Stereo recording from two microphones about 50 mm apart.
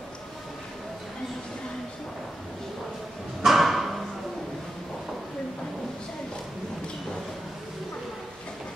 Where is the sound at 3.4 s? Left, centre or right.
Centre.